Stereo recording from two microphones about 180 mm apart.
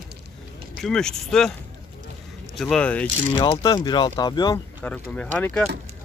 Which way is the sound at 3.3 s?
30° left (ahead or behind).